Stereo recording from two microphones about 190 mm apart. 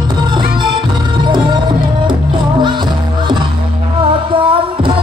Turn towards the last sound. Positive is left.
turn(degrees=-25)  # may be behind; listen again after turning